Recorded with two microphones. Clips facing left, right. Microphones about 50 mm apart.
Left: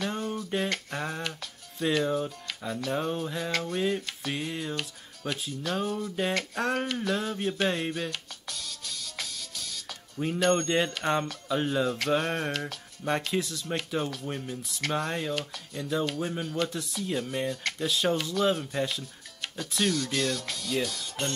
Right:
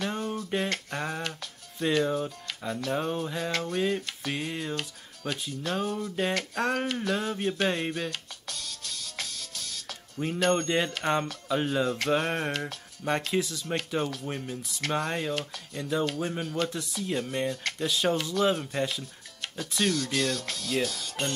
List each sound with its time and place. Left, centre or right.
0.0 s a sound: centre
1.8 s speech: centre
5.7 s a sound: centre
10.1 s speech: centre
12.4 s speech: right
13.0 s speech: centre